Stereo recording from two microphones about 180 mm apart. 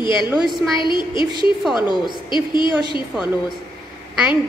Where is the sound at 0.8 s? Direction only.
25° left (ahead or behind).